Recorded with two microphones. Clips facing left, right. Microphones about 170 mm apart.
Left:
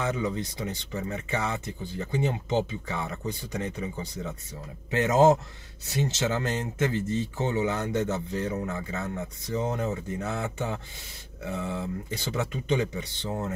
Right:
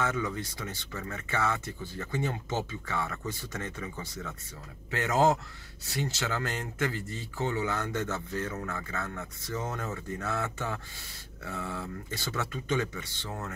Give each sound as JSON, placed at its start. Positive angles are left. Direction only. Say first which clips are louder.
{"t": 0.2, "sound": "speech", "louder": "left 4 dB", "side_deg": 20}